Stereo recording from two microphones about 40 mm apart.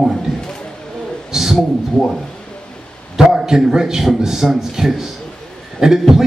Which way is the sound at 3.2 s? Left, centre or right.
Centre.